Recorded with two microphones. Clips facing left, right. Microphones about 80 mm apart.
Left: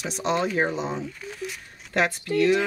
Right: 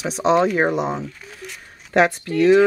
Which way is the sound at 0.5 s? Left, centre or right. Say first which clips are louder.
Right 6 dB; right.